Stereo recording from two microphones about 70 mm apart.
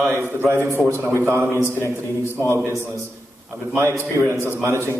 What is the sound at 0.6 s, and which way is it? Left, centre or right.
A man's voice, right.